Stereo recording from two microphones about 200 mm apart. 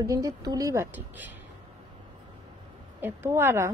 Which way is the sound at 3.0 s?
10° right (ahead or behind).